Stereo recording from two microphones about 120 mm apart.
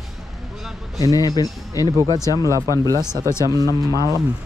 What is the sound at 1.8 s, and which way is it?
Speech, 30° right (ahead or behind).